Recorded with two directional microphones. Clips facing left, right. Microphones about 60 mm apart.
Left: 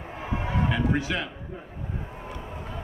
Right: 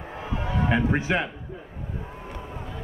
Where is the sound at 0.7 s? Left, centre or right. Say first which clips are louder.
Right 4 dB; right.